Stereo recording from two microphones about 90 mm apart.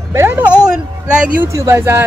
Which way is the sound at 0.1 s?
30° right (ahead or behind).